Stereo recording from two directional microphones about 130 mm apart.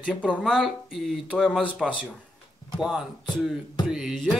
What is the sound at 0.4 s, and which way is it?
Speech, 5° right (ahead or behind).